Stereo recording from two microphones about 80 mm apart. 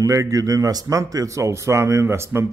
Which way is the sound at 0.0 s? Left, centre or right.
Right.